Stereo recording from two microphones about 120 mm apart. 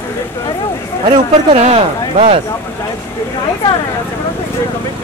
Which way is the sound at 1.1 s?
60° right (ahead or behind).